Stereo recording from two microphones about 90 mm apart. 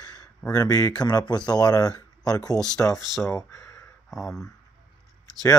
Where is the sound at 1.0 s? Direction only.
50° left (ahead or behind).